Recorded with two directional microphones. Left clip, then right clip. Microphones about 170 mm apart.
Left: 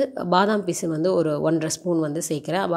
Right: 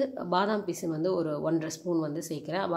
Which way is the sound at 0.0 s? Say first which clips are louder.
Left 8 dB; 40° left (ahead or behind).